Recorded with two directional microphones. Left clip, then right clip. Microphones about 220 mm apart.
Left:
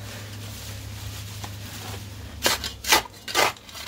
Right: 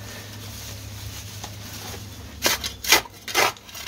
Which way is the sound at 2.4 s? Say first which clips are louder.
Right 1 dB; 20° right (ahead or behind).